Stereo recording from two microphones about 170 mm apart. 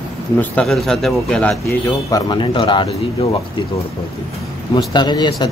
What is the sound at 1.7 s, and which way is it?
Speech, 15° left (ahead or behind).